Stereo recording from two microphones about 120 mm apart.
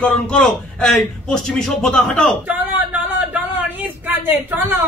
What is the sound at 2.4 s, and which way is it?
Speech, 15° right (ahead or behind).